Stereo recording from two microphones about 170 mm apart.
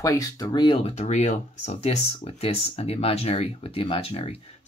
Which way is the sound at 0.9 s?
40° left (ahead or behind).